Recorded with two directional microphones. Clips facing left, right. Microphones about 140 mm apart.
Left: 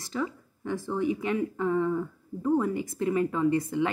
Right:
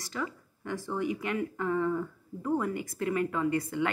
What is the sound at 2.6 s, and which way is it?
Speech, 25° left (ahead or behind).